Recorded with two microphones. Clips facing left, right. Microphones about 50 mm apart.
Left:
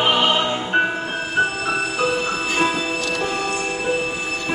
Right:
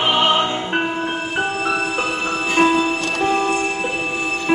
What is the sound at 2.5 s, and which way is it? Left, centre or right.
Music, right.